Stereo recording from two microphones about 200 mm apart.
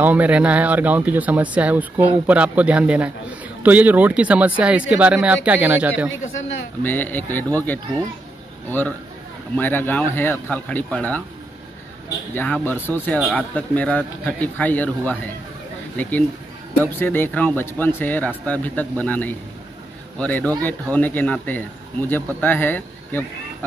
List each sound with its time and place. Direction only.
0.0 s speech: 10° right (ahead or behind)
6.8 s a man's voice: 10° left (ahead or behind)
12.9 s speech: 10° left (ahead or behind)